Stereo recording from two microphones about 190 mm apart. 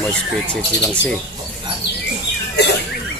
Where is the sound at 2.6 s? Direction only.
60° left (ahead or behind).